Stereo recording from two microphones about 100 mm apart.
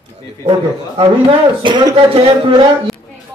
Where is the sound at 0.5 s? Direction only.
50° right (ahead or behind).